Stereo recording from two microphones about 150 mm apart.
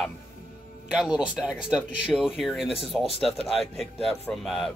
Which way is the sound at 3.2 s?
Centre (ahead or behind).